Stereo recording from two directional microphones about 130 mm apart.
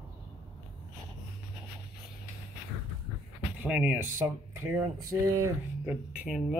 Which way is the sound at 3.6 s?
10° right (ahead or behind).